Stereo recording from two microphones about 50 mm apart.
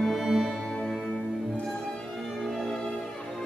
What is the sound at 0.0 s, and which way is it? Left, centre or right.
Music, centre.